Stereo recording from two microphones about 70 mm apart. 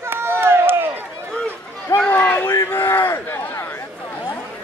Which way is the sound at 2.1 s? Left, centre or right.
Left.